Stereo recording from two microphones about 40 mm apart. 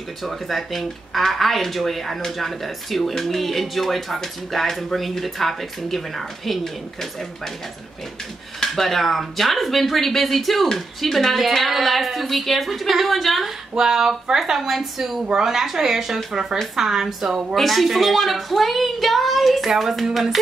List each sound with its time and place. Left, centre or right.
0.2 s speech: centre
8.5 s speech: centre
13.7 s a woman's voice: centre
17.6 s speech: centre